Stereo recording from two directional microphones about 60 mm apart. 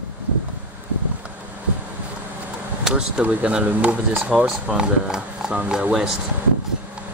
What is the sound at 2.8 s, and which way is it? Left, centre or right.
Speech, centre.